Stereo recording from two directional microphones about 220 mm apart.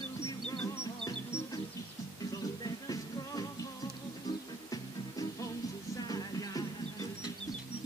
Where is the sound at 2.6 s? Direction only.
15° left (ahead or behind).